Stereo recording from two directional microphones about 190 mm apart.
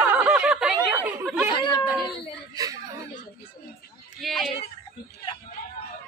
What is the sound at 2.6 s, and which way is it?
Chuckle, 20° right (ahead or behind).